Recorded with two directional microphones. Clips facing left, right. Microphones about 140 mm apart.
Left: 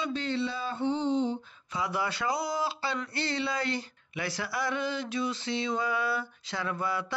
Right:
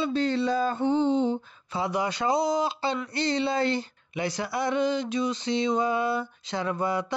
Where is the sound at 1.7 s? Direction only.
25° right (ahead or behind).